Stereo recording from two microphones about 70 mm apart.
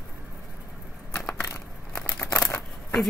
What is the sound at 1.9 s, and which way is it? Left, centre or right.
Crumpling, centre.